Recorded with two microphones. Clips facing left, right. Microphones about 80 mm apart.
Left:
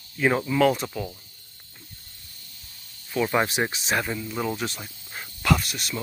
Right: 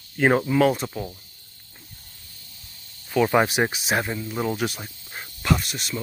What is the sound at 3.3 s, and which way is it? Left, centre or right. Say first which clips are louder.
Speech: right 4 dB; right.